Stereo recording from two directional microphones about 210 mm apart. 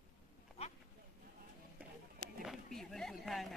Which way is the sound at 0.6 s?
30° left (ahead or behind).